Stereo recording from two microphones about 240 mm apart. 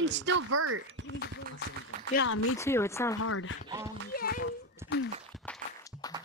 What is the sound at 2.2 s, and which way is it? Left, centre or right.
Speech, left.